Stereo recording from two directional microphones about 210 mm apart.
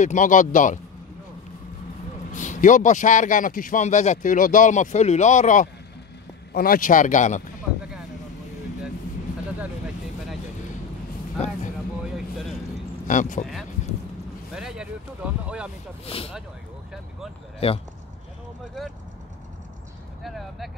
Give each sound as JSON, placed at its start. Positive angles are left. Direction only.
{"t": 0.0, "sound": "a man's voice", "side_deg": 35}
{"t": 2.3, "sound": "a man's voice", "side_deg": 35}
{"t": 12.0, "sound": "vehicle", "side_deg": 0}
{"t": 13.0, "sound": "speech", "side_deg": 35}
{"t": 14.5, "sound": "boat", "side_deg": -5}
{"t": 16.1, "sound": "speech", "side_deg": 25}
{"t": 17.6, "sound": "speech", "side_deg": 25}
{"t": 20.2, "sound": "vehicle", "side_deg": 0}